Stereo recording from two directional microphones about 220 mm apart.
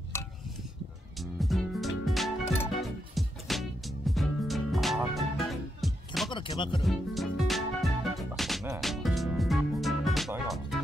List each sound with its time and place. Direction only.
1.2 s music: centre (ahead or behind)
6.3 s speech: 20° left (ahead or behind)
6.8 s music: centre (ahead or behind)